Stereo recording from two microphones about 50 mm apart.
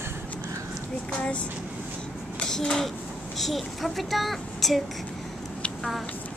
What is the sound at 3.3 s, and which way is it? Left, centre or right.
A child's voice, centre.